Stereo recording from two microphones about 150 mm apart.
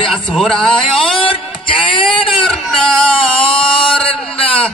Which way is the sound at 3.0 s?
35° left (ahead or behind).